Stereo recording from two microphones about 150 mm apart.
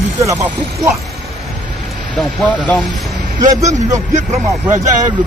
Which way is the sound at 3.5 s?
20° right (ahead or behind).